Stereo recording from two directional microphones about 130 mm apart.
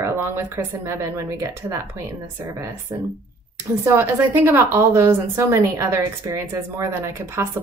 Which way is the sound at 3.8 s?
20° right (ahead or behind).